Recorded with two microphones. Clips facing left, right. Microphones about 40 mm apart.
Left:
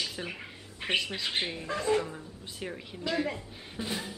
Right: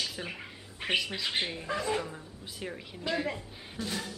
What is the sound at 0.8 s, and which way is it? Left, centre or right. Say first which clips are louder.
Speech: even; centre.